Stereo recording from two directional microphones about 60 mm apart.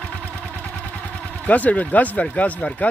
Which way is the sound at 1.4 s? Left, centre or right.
Left.